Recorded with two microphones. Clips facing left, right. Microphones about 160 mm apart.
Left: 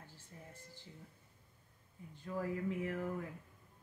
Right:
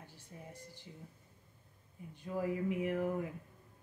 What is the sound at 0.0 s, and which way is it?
Music, 15° right (ahead or behind).